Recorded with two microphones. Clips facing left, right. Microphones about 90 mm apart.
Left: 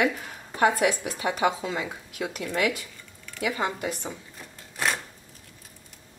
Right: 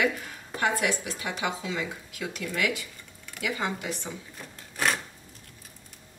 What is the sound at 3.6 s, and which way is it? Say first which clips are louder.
Speech: left 2 dB; 5° left (ahead or behind).